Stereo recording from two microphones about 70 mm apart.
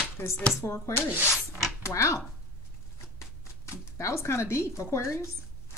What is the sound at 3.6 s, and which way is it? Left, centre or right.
Speech, left.